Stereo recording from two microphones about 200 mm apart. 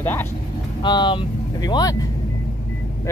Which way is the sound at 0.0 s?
10° left (ahead or behind).